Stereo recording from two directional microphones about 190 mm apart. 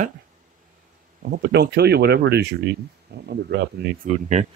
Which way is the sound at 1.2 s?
60° right (ahead or behind).